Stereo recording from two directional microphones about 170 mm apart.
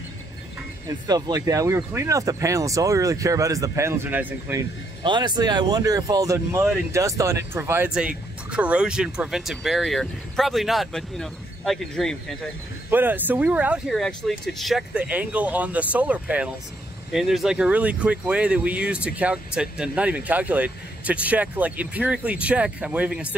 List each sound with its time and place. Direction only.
0.8 s speech: 25° right (ahead or behind)
5.0 s speech: 25° right (ahead or behind); by 12.4 s 5° left (ahead or behind)
12.9 s speech: 10° right (ahead or behind)